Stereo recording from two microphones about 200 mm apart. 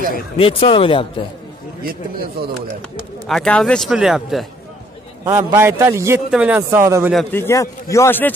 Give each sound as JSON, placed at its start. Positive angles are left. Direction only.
{"t": 0.4, "sound": "speech", "side_deg": 25}
{"t": 1.8, "sound": "a man's voice", "side_deg": -50}
{"t": 3.3, "sound": "speech", "side_deg": 5}
{"t": 5.3, "sound": "a man's voice", "side_deg": -10}
{"t": 7.1, "sound": "speech", "side_deg": 0}
{"t": 7.3, "sound": "a man's voice", "side_deg": 15}